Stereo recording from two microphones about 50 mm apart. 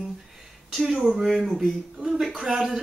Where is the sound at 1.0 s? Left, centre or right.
Centre.